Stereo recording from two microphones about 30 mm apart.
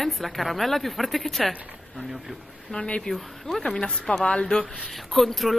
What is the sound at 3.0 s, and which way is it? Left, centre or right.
Speech, centre.